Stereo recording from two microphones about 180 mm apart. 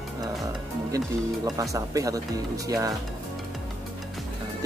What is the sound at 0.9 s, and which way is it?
Speech, 20° right (ahead or behind).